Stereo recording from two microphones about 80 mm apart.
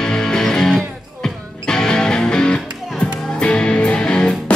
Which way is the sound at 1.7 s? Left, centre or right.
Centre.